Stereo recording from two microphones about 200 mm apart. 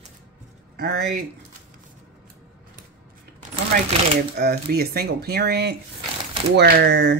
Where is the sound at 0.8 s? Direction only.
50° right (ahead or behind).